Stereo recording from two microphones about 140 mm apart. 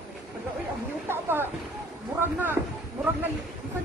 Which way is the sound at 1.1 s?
15° right (ahead or behind).